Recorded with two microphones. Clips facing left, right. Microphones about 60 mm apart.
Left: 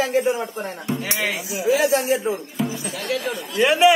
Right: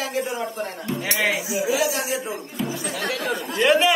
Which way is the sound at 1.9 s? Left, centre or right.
Left.